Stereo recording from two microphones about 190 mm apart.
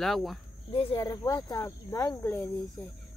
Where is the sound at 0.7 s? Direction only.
30° left (ahead or behind).